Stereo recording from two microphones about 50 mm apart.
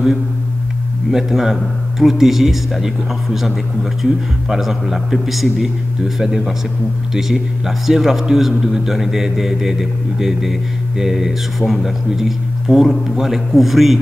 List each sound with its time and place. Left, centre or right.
1.1 s a man's voice: centre